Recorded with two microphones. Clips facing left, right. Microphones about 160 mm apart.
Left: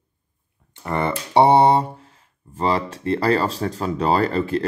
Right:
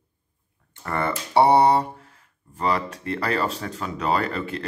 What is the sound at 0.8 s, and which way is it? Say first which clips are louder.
Speech: left 3 dB; 20° left (ahead or behind).